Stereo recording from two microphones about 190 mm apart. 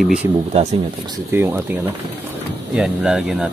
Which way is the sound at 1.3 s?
10° right (ahead or behind).